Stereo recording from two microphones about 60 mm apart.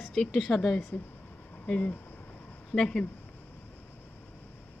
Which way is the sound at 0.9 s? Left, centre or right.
Left.